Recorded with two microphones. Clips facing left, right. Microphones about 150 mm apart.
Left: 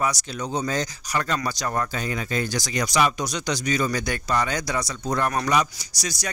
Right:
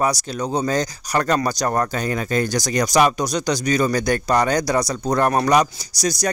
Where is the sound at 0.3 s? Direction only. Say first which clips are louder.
Right 5 dB; 35° right (ahead or behind).